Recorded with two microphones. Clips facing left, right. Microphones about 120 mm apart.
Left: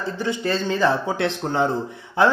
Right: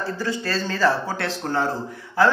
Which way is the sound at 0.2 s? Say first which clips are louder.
Left 5 dB; 20° left (ahead or behind).